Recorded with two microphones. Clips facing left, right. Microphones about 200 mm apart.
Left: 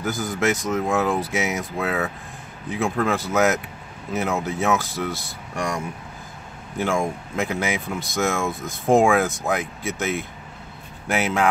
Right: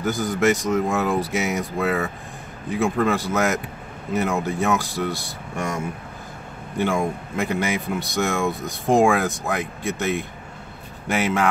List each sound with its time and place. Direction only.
0.0 s speech: centre (ahead or behind)
6.8 s speech: centre (ahead or behind)